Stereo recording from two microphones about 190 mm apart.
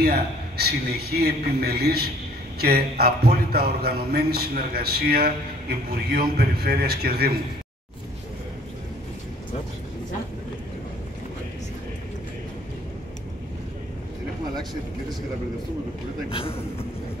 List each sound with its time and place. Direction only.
0.0 s a man's voice: 55° right (ahead or behind)
16.3 s a man's voice: 30° left (ahead or behind)